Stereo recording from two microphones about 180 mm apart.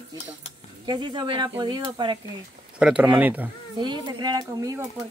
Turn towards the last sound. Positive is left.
turn(degrees=-20)  # may be behind; listen again after turning